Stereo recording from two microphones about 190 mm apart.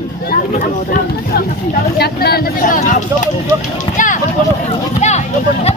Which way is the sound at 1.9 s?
55° left (ahead or behind).